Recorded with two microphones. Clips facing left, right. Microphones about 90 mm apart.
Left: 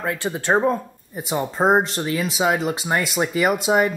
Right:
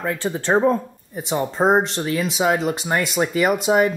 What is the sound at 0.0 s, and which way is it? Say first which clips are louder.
Speech: right 1 dB; 10° left (ahead or behind).